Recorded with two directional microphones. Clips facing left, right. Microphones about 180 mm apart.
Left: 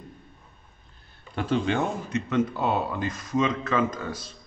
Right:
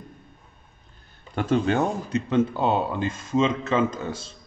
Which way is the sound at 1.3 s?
45° right (ahead or behind).